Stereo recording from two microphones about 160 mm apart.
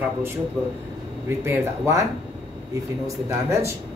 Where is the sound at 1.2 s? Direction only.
15° right (ahead or behind).